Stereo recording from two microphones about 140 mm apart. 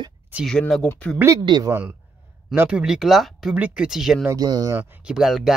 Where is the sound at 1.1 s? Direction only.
20° right (ahead or behind).